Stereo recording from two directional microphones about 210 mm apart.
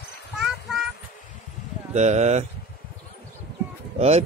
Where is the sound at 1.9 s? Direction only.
35° right (ahead or behind).